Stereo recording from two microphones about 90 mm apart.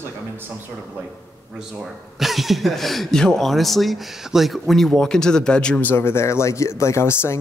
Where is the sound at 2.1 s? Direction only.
Centre (ahead or behind).